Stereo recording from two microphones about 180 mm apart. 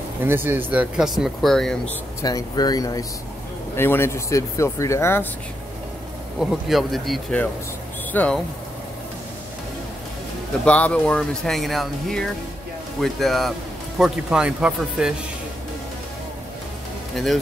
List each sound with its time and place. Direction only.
0.2 s speech: 10° right (ahead or behind)
2.2 s speech: 20° left (ahead or behind)
6.4 s speech: centre (ahead or behind)
10.6 s speech: 5° left (ahead or behind)